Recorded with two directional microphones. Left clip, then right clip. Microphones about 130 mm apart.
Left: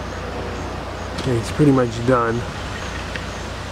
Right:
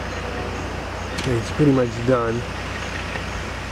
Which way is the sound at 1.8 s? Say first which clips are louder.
Left 2 dB; 20° left (ahead or behind).